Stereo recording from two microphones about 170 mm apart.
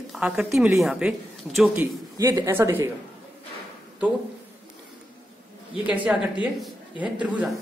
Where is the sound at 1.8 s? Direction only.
20° right (ahead or behind).